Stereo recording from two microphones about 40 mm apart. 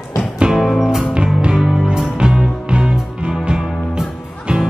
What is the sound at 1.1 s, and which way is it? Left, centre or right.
Music, right.